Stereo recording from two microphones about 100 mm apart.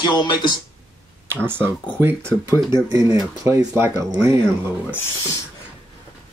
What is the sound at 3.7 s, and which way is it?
Speech, 20° right (ahead or behind).